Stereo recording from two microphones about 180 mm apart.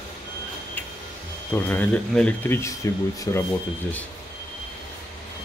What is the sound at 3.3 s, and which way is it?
Speech, 20° left (ahead or behind).